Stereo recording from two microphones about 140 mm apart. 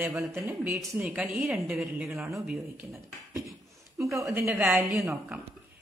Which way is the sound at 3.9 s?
20° right (ahead or behind).